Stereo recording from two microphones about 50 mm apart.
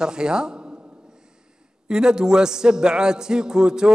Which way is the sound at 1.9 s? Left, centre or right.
Centre.